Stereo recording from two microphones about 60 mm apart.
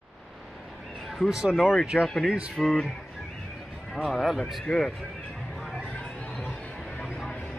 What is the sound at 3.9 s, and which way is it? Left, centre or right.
Speech, centre.